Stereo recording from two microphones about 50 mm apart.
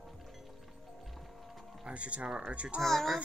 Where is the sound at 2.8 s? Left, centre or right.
Centre.